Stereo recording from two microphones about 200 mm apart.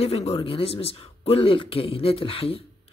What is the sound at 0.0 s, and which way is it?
Speech, 30° left (ahead or behind).